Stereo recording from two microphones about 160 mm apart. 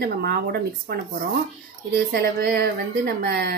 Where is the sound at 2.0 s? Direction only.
75° right (ahead or behind).